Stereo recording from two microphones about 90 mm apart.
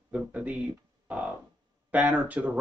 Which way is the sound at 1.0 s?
15° right (ahead or behind).